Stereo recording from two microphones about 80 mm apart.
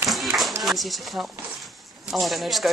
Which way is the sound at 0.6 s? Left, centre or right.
Centre.